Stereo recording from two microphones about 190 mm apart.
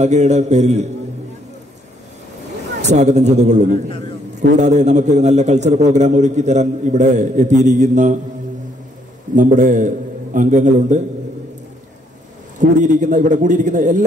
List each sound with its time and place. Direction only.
0.0 s a man's voice: 35° right (ahead or behind)
2.8 s a man's voice: 35° right (ahead or behind)
9.3 s a man's voice: 40° right (ahead or behind)
12.5 s a man's voice: 40° right (ahead or behind)